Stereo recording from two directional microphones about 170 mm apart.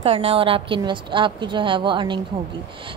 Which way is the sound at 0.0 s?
35° right (ahead or behind).